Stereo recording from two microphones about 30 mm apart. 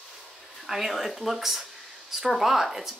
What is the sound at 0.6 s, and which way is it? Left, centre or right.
A woman's voice, centre.